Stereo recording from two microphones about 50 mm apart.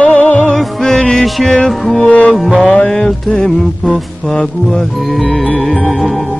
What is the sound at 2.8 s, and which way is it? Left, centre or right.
Music, left.